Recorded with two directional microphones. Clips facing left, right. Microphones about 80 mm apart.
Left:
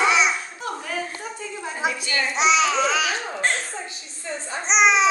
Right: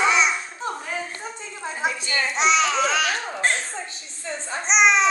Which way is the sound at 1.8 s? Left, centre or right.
Centre.